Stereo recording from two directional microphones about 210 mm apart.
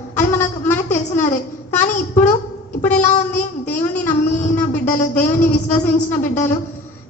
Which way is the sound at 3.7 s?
5° left (ahead or behind).